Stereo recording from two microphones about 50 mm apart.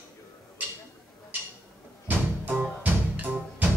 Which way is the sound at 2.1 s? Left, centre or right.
Right.